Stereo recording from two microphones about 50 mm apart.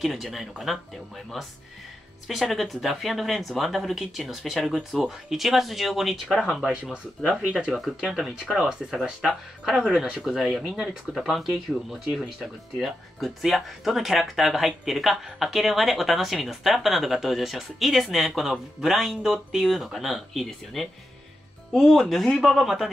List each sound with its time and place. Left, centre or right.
0.0 s speech: centre
6.7 s speech: centre
12.7 s speech: centre
22.3 s speech: centre